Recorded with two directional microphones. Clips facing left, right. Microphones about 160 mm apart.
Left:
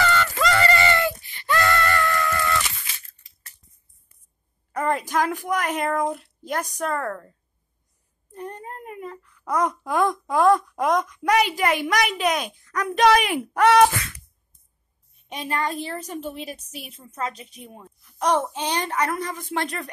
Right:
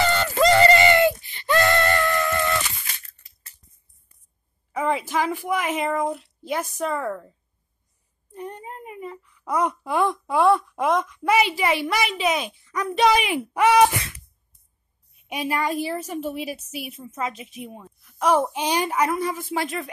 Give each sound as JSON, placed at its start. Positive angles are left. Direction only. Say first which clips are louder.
{"t": 0.0, "sound": "a sound", "louder": "right 3 dB", "side_deg": -25}
{"t": 4.7, "sound": "a woman's voice", "louder": "even", "side_deg": 0}
{"t": 15.2, "sound": "a woman's voice", "louder": "right 2 dB", "side_deg": -10}